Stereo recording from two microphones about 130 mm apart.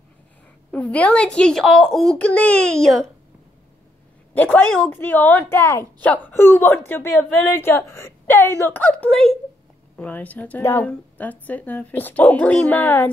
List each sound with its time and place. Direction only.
0.7 s a woman's voice: 10° left (ahead or behind)
4.3 s a woman's voice: 15° left (ahead or behind)